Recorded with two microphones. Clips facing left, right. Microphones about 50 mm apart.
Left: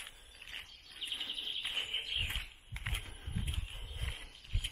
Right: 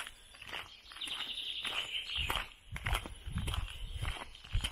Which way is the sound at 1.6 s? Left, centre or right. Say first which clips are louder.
Right 2 dB; right.